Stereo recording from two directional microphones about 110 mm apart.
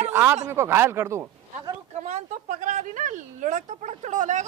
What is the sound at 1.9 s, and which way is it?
A woman's voice, 90° right.